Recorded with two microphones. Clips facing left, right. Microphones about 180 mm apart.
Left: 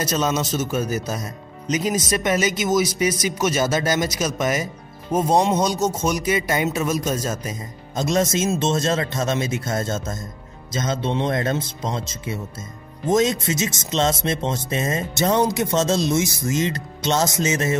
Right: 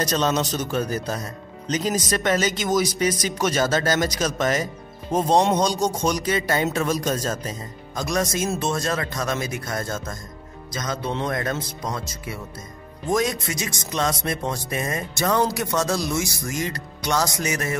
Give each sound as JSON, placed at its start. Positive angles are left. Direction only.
{"t": 0.0, "sound": "speech", "side_deg": 10}
{"t": 7.9, "sound": "speech", "side_deg": 25}